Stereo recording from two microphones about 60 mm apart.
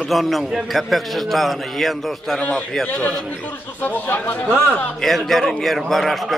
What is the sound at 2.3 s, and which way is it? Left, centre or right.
Speech, centre.